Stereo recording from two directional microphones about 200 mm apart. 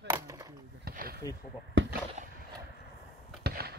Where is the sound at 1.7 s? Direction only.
65° right (ahead or behind).